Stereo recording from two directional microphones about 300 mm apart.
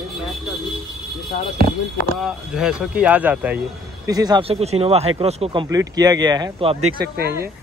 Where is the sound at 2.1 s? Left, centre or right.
Centre.